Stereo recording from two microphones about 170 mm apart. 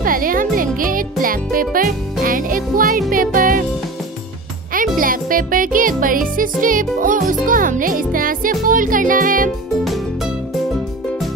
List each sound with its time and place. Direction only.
0.0 s music: 55° right (ahead or behind)
4.7 s music: 55° right (ahead or behind)